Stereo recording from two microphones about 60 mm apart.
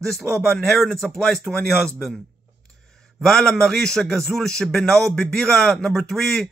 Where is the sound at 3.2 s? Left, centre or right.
Centre.